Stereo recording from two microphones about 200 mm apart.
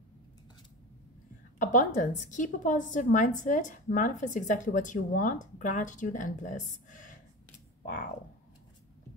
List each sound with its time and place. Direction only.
1.6 s speech: 40° left (ahead or behind)